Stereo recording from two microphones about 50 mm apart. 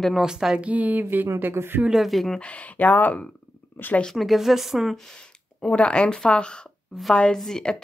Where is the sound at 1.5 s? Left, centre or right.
Right.